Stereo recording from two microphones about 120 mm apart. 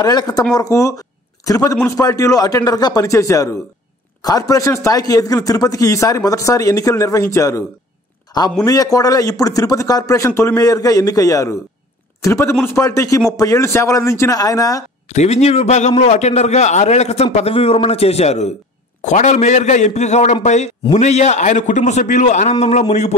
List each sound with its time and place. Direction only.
0.0 s speech: 35° left (ahead or behind)
8.3 s a sound: 30° left (ahead or behind)
8.6 s speech: 30° left (ahead or behind)
15.0 s a man's voice: 65° left (ahead or behind)
18.9 s a man's voice: 80° left